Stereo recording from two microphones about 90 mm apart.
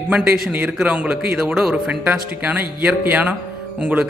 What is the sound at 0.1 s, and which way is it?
Speech, 15° right (ahead or behind).